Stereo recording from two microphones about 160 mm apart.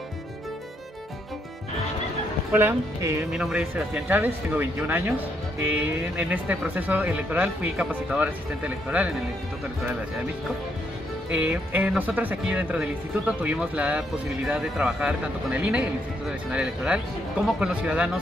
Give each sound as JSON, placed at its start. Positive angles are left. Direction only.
{"t": 2.5, "sound": "speech", "side_deg": -15}
{"t": 3.3, "sound": "speech", "side_deg": -5}
{"t": 11.3, "sound": "speech", "side_deg": -10}